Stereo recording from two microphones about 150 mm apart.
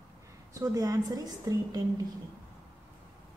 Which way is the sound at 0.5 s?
25° right (ahead or behind).